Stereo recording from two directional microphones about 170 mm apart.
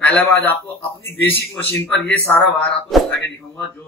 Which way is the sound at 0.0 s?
10° left (ahead or behind).